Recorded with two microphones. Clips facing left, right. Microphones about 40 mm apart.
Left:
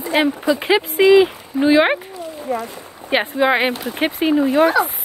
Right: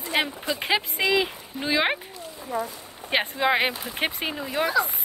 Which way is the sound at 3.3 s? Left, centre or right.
Centre.